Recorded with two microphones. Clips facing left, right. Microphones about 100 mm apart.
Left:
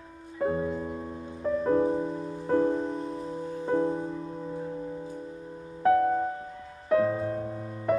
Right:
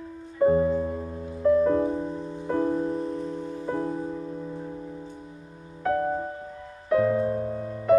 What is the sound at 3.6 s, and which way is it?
Music, 20° left (ahead or behind).